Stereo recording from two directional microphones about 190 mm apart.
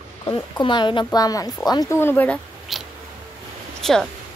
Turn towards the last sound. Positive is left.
turn(degrees=0)  # may be behind; listen again after turning